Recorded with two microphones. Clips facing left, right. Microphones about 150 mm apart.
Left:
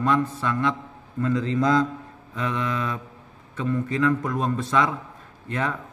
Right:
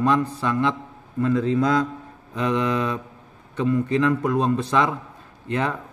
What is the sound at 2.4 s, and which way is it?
A man's voice, 20° right (ahead or behind).